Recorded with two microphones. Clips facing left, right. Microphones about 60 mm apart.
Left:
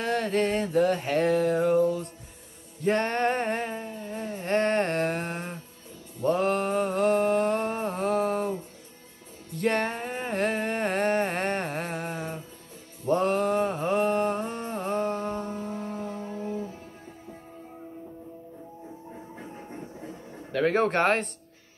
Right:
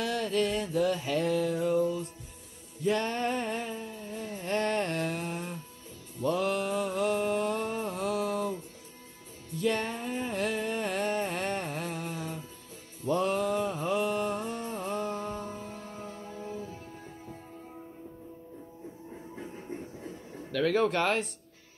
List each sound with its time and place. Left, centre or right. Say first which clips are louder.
0.0 s a sound: left 3 dB; left
6.2 s mantra: left 4 dB; left
9.5 s humming: left 3 dB; left
13.0 s mantra: left 4 dB; left
14.7 s music: left 7 dB; left
20.5 s a sound: left 3 dB; left